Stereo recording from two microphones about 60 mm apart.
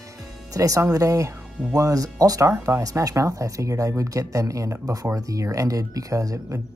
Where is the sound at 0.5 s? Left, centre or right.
Right.